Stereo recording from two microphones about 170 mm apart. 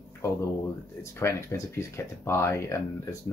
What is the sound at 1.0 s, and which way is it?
Speech, 15° left (ahead or behind).